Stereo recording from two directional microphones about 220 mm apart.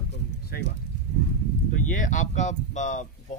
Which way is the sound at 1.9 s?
35° left (ahead or behind).